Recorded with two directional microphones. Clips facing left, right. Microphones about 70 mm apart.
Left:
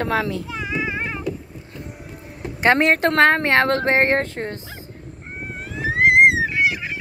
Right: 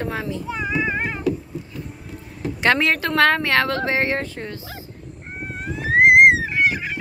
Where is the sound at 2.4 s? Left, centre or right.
Left.